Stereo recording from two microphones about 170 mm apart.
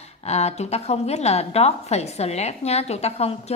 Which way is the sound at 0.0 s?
40° left (ahead or behind).